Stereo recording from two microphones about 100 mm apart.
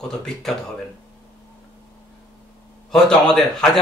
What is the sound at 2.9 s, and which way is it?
Speech, 5° left (ahead or behind).